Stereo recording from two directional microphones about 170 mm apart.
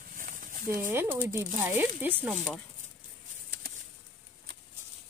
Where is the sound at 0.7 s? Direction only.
10° right (ahead or behind).